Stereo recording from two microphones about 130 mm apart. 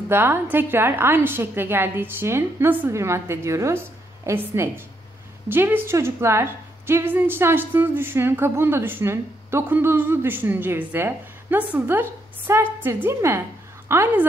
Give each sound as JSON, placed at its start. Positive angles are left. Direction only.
{"t": 0.1, "sound": "a woman's voice", "side_deg": -15}